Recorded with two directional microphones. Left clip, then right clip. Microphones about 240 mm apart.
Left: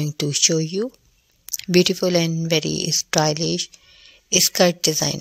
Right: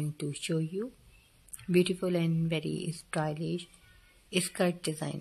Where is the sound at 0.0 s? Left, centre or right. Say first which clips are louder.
Left 18 dB; left.